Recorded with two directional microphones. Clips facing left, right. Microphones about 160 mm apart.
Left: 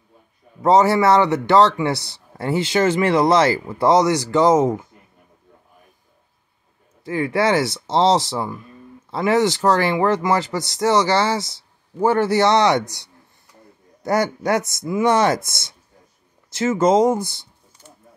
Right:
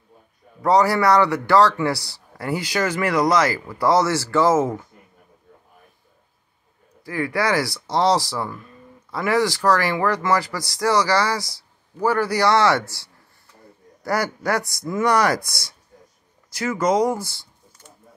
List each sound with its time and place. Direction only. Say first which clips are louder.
0.6 s a man's voice: left 3 dB; 20° left (ahead or behind)
7.1 s a man's voice: left 3 dB; 25° left (ahead or behind)